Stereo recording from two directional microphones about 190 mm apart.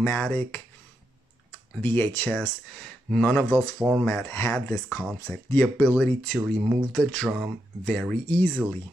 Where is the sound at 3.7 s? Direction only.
5° right (ahead or behind).